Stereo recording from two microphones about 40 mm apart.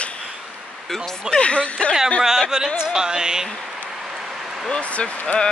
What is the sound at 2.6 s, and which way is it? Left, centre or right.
Speech, centre.